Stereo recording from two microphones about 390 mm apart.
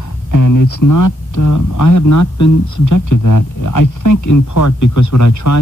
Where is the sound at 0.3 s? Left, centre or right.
Left.